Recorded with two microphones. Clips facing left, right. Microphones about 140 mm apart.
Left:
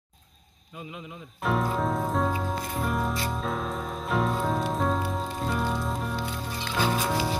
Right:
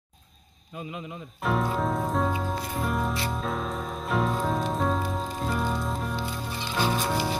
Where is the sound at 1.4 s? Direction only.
Centre (ahead or behind).